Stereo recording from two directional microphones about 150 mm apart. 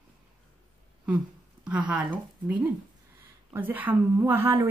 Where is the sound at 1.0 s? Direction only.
10° right (ahead or behind).